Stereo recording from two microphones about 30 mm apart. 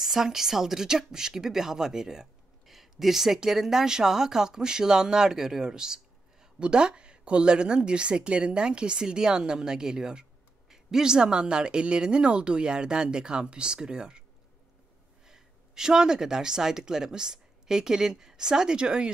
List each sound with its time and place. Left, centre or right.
0.0 s speech: centre
2.6 s a sound: centre
3.4 s a woman's voice: centre; by 14.2 s right
15.2 s a woman's voice: centre